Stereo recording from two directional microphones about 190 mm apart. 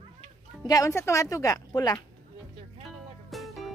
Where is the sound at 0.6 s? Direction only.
20° left (ahead or behind).